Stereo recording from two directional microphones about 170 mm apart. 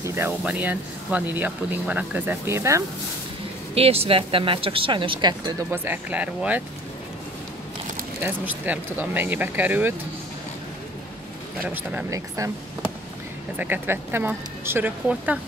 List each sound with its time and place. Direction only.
0.0 s speech: 15° right (ahead or behind)
3.7 s speech: 35° right (ahead or behind)
5.7 s speech: 10° right (ahead or behind)
8.2 s speech: 10° right (ahead or behind)
11.7 s speech: 10° right (ahead or behind)
13.6 s speech: 10° right (ahead or behind)